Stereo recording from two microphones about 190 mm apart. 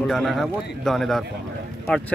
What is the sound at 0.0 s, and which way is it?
Speech, centre (ahead or behind).